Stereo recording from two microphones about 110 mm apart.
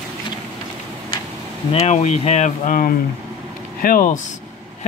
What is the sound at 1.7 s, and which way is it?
Speech, 80° left.